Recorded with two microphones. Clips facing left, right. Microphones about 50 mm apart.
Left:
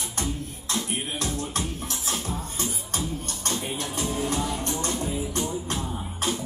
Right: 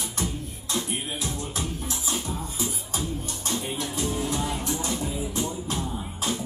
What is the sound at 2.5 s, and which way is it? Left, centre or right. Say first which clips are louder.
Music: even; left.